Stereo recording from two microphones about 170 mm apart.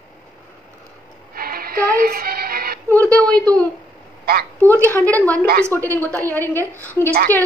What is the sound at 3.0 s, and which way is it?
Speech, 20° right (ahead or behind).